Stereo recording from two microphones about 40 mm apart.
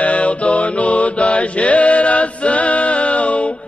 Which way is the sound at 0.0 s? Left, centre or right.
Left.